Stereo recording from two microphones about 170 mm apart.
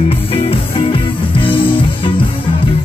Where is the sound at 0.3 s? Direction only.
30° left (ahead or behind).